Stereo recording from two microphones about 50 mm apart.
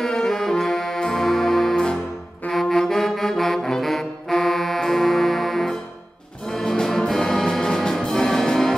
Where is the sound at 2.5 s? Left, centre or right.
Centre.